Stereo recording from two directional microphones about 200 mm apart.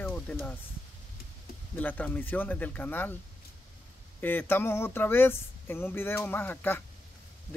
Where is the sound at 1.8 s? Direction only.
5° left (ahead or behind).